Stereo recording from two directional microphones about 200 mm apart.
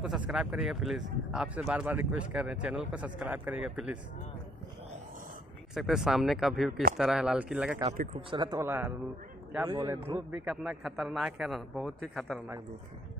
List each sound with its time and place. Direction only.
0.3 s speech: 5° right (ahead or behind)
5.8 s speech: centre (ahead or behind)
8.3 s a man's voice: 20° right (ahead or behind)
10.1 s speech: 10° right (ahead or behind)